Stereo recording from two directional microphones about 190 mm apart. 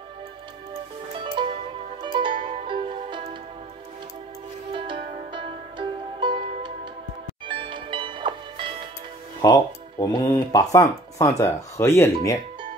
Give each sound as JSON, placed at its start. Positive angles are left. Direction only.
{"t": 1.1, "sound": "music", "side_deg": -25}
{"t": 4.7, "sound": "music", "side_deg": -25}
{"t": 9.4, "sound": "speech", "side_deg": 20}